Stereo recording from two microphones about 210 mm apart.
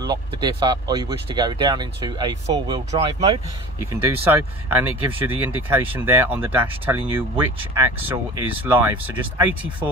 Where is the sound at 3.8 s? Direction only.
10° right (ahead or behind).